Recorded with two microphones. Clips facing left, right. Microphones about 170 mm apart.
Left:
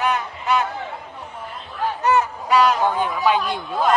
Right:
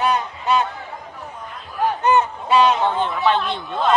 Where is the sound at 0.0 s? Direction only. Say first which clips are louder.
Right 2 dB; 30° right (ahead or behind).